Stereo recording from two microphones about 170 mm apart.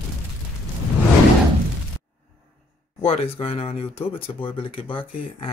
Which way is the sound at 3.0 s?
35° left (ahead or behind).